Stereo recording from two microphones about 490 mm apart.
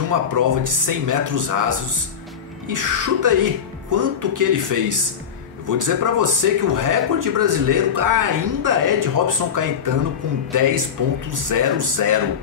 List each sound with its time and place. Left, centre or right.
0.1 s speech: right